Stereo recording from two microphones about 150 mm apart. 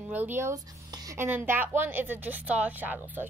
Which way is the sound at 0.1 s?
15° right (ahead or behind).